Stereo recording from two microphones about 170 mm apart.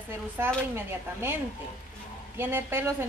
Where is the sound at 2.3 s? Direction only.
15° right (ahead or behind).